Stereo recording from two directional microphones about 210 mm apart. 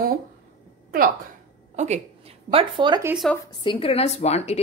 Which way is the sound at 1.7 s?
30° right (ahead or behind).